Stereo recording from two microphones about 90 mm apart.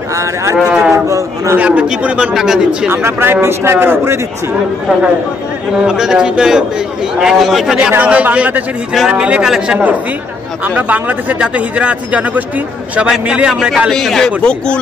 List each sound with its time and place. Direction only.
0.1 s speech: 35° right (ahead or behind)
0.6 s a man's voice: 5° right (ahead or behind)
0.9 s a man's voice: 35° right (ahead or behind)
1.6 s a man's voice: 15° right (ahead or behind)
2.9 s speech: 25° right (ahead or behind)
5.9 s a man's voice: 5° right (ahead or behind)
7.9 s a man's voice: 15° right (ahead or behind)
10.6 s a man's voice: 20° right (ahead or behind)
13.9 s a man's voice: 5° left (ahead or behind)